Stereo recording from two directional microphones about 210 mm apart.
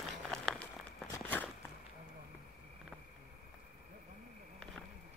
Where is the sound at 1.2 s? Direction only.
10° left (ahead or behind).